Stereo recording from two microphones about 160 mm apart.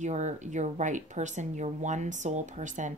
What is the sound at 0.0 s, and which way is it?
Speech, 45° right (ahead or behind).